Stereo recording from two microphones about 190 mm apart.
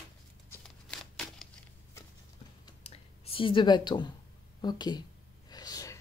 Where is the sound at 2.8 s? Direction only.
30° left (ahead or behind).